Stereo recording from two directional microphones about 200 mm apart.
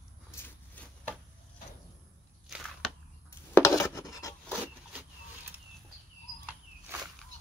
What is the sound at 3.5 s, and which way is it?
Rub, 15° left (ahead or behind).